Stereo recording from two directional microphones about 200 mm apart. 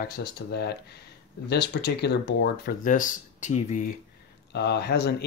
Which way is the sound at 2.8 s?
40° left (ahead or behind).